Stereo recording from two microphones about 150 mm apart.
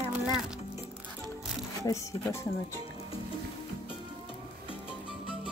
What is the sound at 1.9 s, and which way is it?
Speech, 20° left (ahead or behind).